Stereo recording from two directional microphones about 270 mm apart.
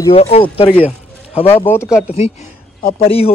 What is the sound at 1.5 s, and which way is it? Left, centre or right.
Speech, centre.